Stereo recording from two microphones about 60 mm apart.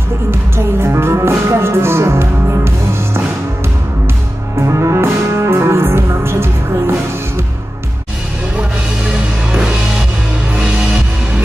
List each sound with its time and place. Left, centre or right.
0.3 s music: right
4.6 s music: right
10.5 s music: centre